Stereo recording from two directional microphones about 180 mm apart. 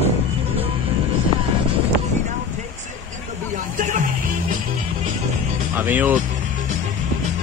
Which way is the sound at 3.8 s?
45° right (ahead or behind).